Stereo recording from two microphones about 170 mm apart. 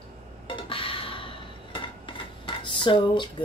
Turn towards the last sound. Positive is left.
turn(degrees=30)  # may be behind; listen again after turning